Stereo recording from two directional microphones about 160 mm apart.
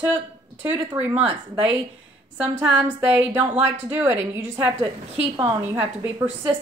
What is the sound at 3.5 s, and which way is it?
A woman's voice, 15° right (ahead or behind).